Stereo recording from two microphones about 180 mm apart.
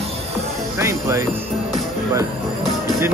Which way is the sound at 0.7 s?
15° right (ahead or behind).